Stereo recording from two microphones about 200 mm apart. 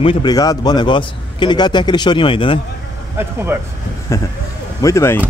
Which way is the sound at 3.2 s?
10° right (ahead or behind).